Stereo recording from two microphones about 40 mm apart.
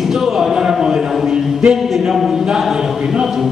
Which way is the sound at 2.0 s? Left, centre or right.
Centre.